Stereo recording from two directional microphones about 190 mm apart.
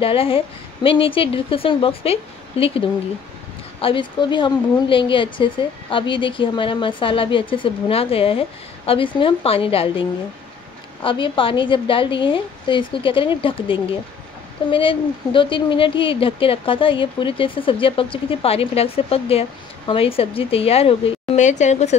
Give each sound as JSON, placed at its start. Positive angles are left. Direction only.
{"t": 0.0, "sound": "speech", "side_deg": 30}
{"t": 3.8, "sound": "a woman's voice", "side_deg": 25}